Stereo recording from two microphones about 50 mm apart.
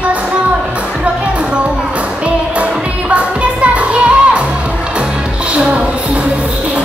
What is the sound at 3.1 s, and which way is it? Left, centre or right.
Music, right.